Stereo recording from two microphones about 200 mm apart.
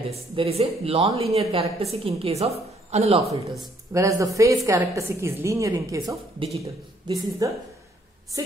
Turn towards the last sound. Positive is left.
turn(degrees=-15)  # may be behind; listen again after turning